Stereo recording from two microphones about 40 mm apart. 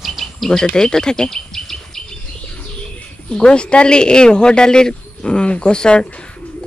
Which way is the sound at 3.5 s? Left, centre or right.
Left.